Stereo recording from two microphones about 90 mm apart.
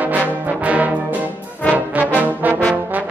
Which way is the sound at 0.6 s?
15° right (ahead or behind).